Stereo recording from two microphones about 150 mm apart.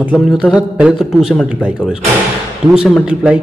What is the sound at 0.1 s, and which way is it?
A man's voice, 5° right (ahead or behind).